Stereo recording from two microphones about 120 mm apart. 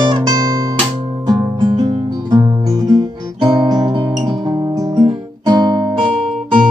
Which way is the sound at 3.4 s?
40° right (ahead or behind).